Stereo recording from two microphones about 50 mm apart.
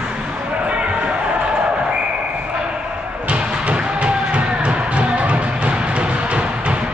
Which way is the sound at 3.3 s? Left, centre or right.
Right.